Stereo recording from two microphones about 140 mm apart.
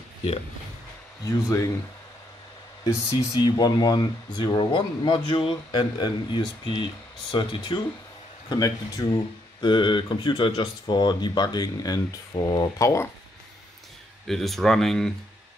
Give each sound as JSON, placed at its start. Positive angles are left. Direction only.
{"t": 2.9, "sound": "speech", "side_deg": 25}
{"t": 14.2, "sound": "speech", "side_deg": 0}